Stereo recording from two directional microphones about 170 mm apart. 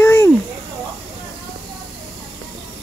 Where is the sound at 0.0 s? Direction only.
15° left (ahead or behind).